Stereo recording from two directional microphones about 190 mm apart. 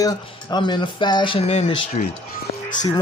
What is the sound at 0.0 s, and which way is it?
Speech, 20° left (ahead or behind).